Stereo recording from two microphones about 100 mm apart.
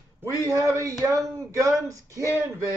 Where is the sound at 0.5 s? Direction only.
30° right (ahead or behind).